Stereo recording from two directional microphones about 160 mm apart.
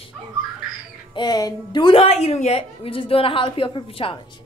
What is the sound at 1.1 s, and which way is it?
Speech, 25° left (ahead or behind).